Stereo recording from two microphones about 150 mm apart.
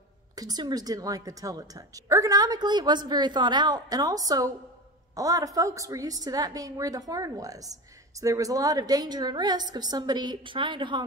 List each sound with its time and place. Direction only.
0.4 s a woman's voice: 25° right (ahead or behind)